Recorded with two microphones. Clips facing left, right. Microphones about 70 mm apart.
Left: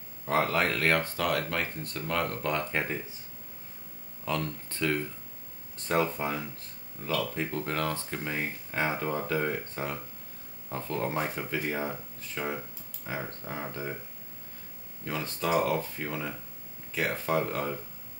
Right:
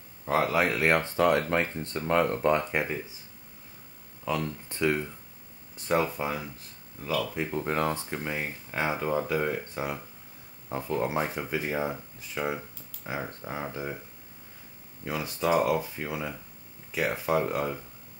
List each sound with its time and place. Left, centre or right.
0.2 s speech: centre
4.2 s speech: centre
5.9 s speech: centre
7.6 s speech: right
15.0 s speech: centre